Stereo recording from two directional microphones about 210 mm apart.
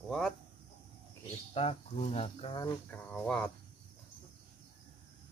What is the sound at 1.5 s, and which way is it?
Speech, 30° left (ahead or behind).